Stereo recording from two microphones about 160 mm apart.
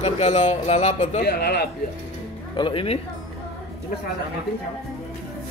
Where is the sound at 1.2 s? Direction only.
90° left.